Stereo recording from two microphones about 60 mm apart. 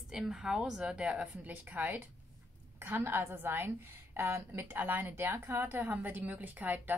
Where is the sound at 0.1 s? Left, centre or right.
Centre.